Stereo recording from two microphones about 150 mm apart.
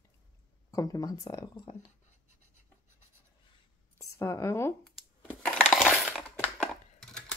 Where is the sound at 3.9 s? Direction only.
20° left (ahead or behind).